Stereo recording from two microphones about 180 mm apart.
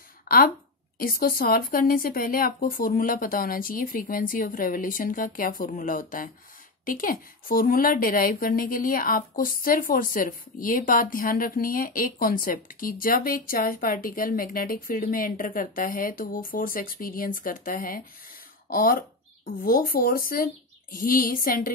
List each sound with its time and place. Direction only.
0.3 s a woman's voice: 55° left (ahead or behind)